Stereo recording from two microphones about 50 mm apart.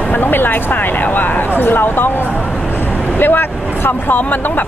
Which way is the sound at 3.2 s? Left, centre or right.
Left.